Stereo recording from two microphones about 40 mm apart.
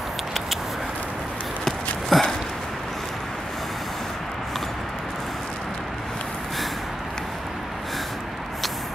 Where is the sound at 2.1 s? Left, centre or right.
Centre.